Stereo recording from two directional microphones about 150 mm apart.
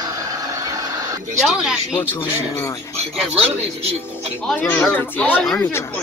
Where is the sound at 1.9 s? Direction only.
15° left (ahead or behind).